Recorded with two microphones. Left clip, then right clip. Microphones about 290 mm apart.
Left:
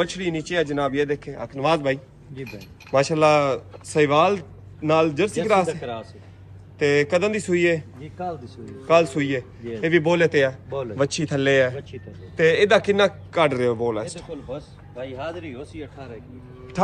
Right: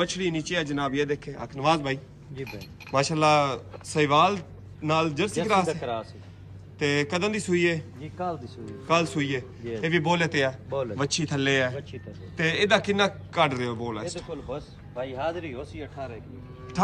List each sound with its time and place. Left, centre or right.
0.0 s a man's voice: centre
6.8 s a man's voice: centre
14.3 s speech: right
16.8 s speech: centre